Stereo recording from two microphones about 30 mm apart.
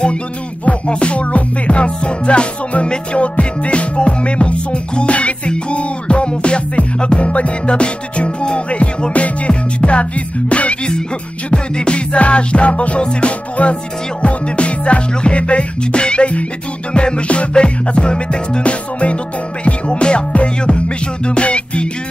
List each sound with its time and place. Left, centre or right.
0.8 s music: left
11.5 s music: left
13.6 s music: left
18.6 s music: left
19.6 s music: left